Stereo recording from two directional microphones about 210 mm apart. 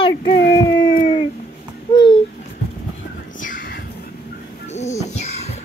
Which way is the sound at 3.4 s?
40° left (ahead or behind).